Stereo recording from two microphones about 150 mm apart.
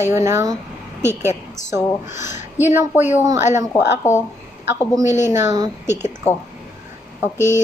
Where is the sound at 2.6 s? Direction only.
15° right (ahead or behind).